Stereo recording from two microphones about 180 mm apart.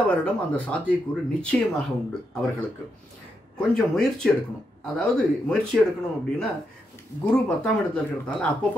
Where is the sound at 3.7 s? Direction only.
Centre (ahead or behind).